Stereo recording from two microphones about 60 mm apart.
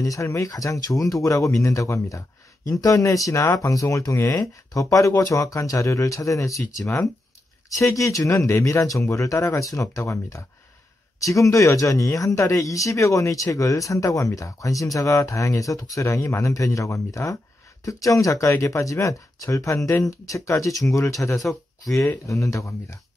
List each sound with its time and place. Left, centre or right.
0.0 s speech: left
22.2 s speech: left